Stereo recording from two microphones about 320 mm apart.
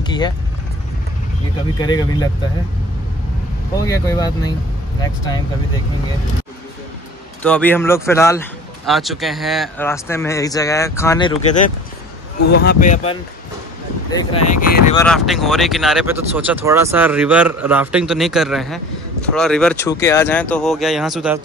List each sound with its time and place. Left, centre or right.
0.0 s vehicle: centre
1.8 s speech: centre
3.7 s speech: centre
7.4 s speech: centre
12.4 s speech: left
15.0 s speech: centre